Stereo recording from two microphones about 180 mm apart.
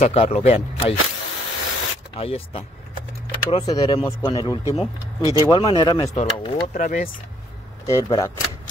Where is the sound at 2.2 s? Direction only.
35° left (ahead or behind).